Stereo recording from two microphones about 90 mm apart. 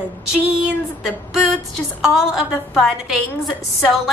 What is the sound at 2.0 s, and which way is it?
Speech, 5° right (ahead or behind).